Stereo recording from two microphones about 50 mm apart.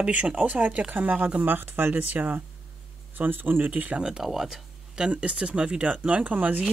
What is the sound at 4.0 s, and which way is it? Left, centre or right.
Speech, centre.